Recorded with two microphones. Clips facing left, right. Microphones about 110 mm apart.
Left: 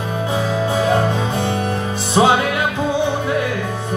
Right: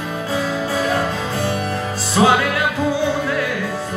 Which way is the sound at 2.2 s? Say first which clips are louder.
Left 1 dB; 25° left (ahead or behind).